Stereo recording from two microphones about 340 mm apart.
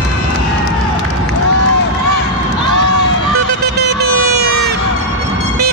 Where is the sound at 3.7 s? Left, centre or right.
Right.